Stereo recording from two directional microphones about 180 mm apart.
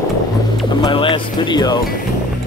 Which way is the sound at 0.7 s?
25° left (ahead or behind).